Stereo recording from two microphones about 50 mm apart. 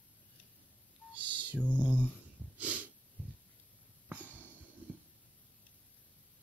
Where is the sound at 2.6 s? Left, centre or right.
Right.